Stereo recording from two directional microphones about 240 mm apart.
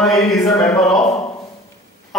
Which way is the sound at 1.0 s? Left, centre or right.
Left.